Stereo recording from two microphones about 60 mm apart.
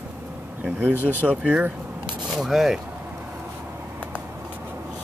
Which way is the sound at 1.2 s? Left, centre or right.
Centre.